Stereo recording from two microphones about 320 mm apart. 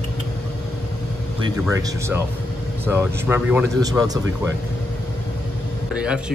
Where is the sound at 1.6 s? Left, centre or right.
Centre.